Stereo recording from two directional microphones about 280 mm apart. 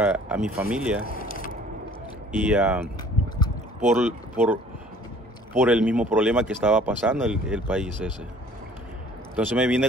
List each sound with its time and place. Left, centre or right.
0.0 s speech: centre
2.3 s speech: centre
3.9 s speech: centre
5.6 s speech: centre
9.3 s a man's voice: centre